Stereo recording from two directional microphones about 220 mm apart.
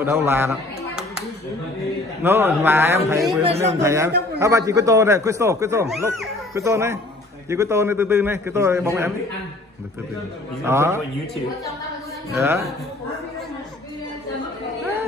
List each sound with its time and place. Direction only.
0.0 s speech: 10° right (ahead or behind)
2.2 s a man's voice: 10° right (ahead or behind)
10.6 s a man's voice: 10° right (ahead or behind)
12.4 s a man's voice: 15° right (ahead or behind)